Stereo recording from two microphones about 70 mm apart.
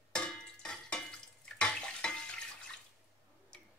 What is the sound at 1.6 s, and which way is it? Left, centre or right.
Water, centre.